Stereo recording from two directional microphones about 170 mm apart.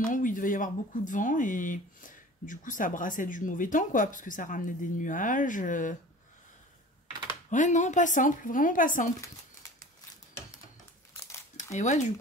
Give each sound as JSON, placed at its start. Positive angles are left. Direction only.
{"t": 0.1, "sound": "speech", "side_deg": 50}
{"t": 7.4, "sound": "speech", "side_deg": 45}
{"t": 9.2, "sound": "a sound", "side_deg": 20}
{"t": 11.7, "sound": "speech", "side_deg": 45}